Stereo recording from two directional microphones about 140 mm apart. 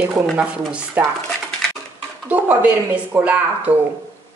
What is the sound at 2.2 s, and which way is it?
Speech, 10° right (ahead or behind).